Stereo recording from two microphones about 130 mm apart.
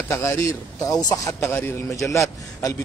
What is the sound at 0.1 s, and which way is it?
Speech, 25° left (ahead or behind).